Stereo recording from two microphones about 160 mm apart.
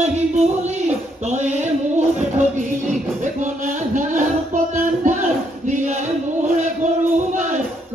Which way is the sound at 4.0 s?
50° right (ahead or behind).